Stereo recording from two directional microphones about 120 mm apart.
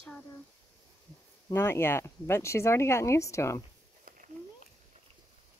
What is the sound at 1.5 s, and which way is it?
Speech, 20° left (ahead or behind).